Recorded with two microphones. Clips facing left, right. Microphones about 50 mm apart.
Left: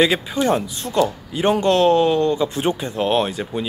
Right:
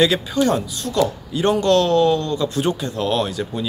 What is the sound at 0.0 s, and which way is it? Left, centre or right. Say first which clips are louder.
Speech: right 1 dB; left.